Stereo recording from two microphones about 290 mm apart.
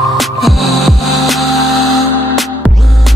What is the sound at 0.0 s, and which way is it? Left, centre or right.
Music, centre.